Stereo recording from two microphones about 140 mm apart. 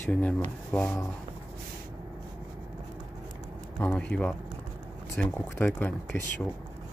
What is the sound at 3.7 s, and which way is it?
Speech, 10° left (ahead or behind).